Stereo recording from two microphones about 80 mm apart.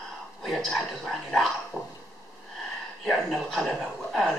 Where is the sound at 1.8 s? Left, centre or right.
Centre.